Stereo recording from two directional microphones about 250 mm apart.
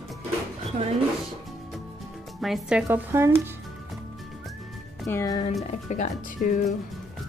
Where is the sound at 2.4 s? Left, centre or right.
Centre.